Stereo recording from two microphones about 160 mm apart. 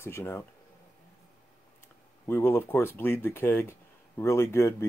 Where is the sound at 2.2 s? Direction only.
15° left (ahead or behind).